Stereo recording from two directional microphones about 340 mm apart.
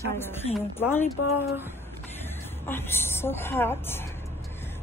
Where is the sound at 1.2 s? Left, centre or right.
Left.